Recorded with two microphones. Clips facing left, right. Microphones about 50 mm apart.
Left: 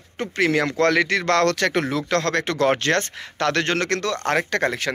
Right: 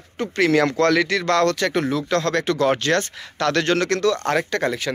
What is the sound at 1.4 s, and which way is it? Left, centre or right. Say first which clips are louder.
Speech: even; left.